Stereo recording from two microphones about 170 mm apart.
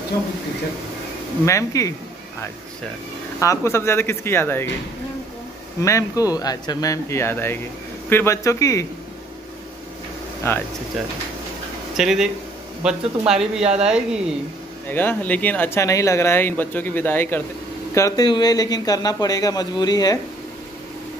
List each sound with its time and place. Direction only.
1.4 s speech: 15° left (ahead or behind)
3.3 s speech: 15° left (ahead or behind)
5.8 s speech: 20° left (ahead or behind)
10.4 s speech: 15° left (ahead or behind)
12.0 s speech: 5° right (ahead or behind)
14.9 s speech: 10° left (ahead or behind)